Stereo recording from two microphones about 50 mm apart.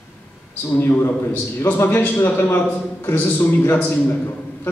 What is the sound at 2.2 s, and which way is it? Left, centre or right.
A man's voice, left.